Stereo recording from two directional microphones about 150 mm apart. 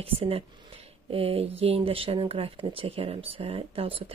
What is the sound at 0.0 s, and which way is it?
Speech, 40° right (ahead or behind).